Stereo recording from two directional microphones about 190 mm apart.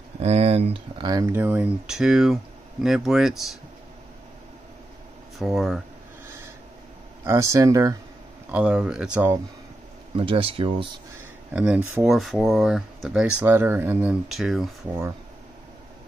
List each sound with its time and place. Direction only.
0.2 s speech: 35° right (ahead or behind); by 3.5 s centre (ahead or behind)
5.4 s speech: centre (ahead or behind)
7.2 s speech: 15° right (ahead or behind)
8.5 s speech: 5° right (ahead or behind)
10.1 s speech: 30° right (ahead or behind)
11.5 s speech: 5° right (ahead or behind)